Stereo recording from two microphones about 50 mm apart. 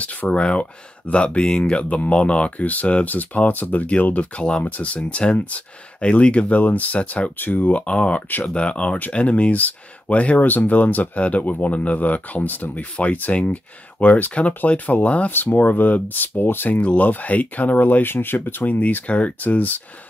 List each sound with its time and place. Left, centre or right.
0.0 s speech: left
7.3 s speech: left
10.4 s speech: left
18.7 s speech: left